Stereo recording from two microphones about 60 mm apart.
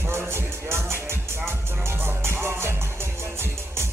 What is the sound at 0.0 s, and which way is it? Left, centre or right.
Music, right.